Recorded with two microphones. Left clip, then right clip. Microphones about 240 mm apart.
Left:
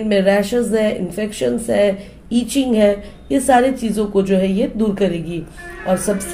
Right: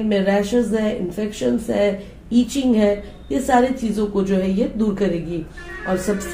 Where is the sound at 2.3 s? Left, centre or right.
Left.